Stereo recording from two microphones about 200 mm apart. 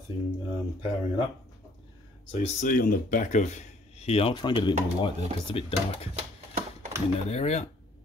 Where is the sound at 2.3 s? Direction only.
30° left (ahead or behind).